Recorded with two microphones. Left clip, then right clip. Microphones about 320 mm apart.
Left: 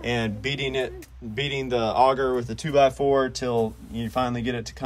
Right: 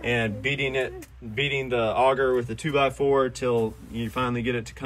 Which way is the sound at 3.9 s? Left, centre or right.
Left.